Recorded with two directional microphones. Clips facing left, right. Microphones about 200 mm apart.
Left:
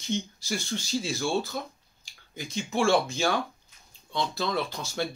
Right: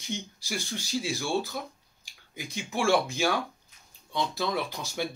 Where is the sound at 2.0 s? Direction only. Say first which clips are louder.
Left 1 dB; 15° right (ahead or behind).